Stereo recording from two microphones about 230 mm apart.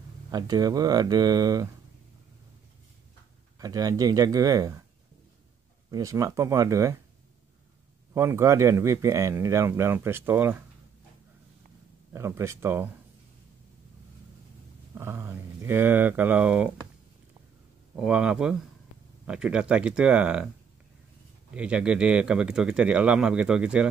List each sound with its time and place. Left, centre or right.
0.3 s speech: centre
3.5 s speech: centre
5.9 s speech: centre
8.1 s speech: centre
12.1 s speech: centre
15.0 s speech: centre
17.9 s speech: centre
21.5 s speech: centre